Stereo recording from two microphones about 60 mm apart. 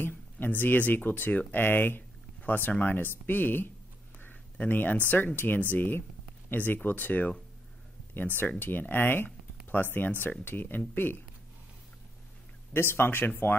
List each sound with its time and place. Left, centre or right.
0.0 s speech: left
4.2 s a sound: left
5.1 s speech: left
8.4 s speech: left
12.7 s speech: left